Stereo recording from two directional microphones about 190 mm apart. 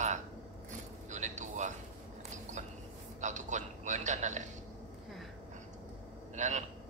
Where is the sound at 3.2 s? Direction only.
40° right (ahead or behind).